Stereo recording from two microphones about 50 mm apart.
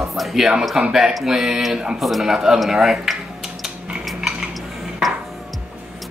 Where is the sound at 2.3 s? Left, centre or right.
Centre.